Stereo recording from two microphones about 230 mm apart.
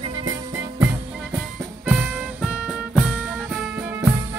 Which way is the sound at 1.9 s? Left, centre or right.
Centre.